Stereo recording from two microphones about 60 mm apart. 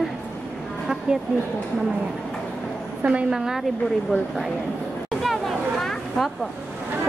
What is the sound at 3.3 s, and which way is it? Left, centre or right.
Speech, centre.